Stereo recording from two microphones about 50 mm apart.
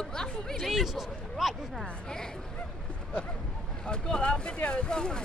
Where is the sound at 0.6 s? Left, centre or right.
Centre.